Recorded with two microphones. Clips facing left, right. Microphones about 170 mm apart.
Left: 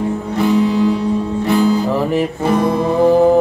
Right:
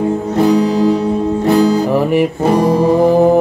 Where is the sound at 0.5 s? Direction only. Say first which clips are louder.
Right 1 dB; 40° right (ahead or behind).